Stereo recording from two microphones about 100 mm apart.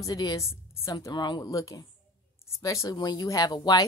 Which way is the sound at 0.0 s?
40° left (ahead or behind).